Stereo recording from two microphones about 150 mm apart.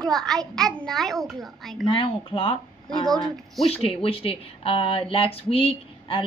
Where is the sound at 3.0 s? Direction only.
Centre (ahead or behind).